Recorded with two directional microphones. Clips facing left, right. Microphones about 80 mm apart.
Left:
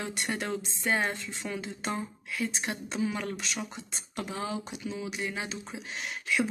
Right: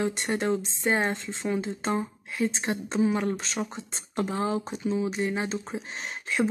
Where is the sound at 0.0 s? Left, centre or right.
Right.